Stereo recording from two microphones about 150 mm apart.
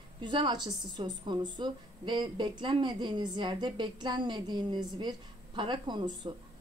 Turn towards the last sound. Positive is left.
turn(degrees=-30)  # may be behind; listen again after turning